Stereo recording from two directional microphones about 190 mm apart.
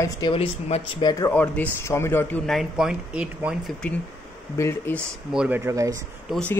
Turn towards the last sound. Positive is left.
turn(degrees=5)  # may be behind; listen again after turning